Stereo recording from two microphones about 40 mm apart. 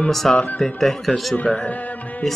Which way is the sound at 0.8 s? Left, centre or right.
Centre.